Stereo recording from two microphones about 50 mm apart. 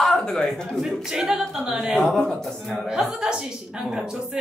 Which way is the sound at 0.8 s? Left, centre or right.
Centre.